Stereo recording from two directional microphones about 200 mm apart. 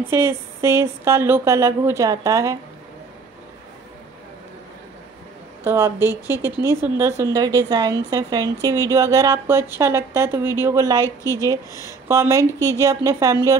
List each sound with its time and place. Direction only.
0.1 s speech: 10° right (ahead or behind)
5.6 s speech: 10° right (ahead or behind)
11.2 s speech: 15° left (ahead or behind)
12.1 s speech: 15° right (ahead or behind)
12.5 s speech: 15° left (ahead or behind)
12.8 s speech: 15° right (ahead or behind)